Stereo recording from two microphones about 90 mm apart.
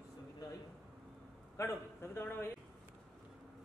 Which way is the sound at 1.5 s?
25° left (ahead or behind).